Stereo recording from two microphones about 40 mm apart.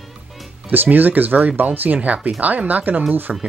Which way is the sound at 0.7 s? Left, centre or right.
Right.